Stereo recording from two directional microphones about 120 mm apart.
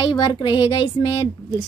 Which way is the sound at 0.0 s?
40° left (ahead or behind).